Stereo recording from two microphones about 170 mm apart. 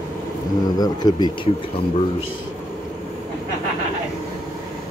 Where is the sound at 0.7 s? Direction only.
25° left (ahead or behind).